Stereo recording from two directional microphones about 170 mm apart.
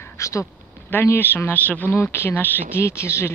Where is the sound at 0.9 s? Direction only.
10° left (ahead or behind).